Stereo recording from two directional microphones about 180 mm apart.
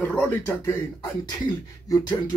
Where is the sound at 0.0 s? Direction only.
10° left (ahead or behind).